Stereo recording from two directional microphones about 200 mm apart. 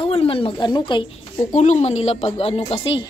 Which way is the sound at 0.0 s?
30° left (ahead or behind).